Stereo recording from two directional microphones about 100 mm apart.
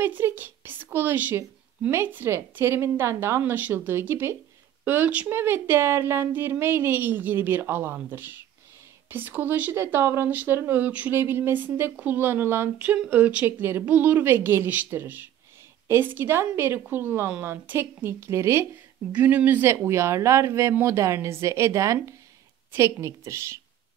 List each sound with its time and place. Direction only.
0.0 s a woman's voice: 20° right (ahead or behind)
12.7 s a woman's voice: 15° right (ahead or behind)
19.1 s a woman's voice: 15° right (ahead or behind)